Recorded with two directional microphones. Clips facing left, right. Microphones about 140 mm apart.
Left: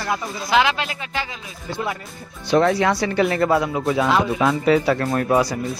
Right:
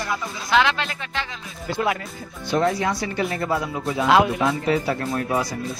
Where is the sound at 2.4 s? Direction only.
80° left.